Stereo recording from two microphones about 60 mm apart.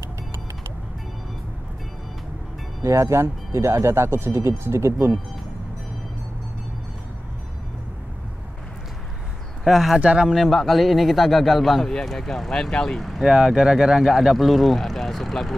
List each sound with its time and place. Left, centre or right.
2.8 s speech: right
9.7 s speech: centre
9.9 s speech: centre
10.3 s speech: centre
13.2 s speech: centre